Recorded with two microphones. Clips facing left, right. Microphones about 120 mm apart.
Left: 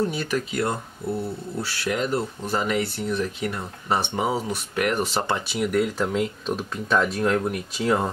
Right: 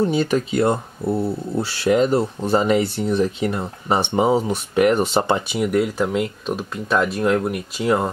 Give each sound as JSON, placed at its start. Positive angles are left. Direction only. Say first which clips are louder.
{"t": 0.0, "sound": "speech", "louder": "right 6 dB", "side_deg": -25}
{"t": 5.6, "sound": "speech", "louder": "right 1 dB", "side_deg": -5}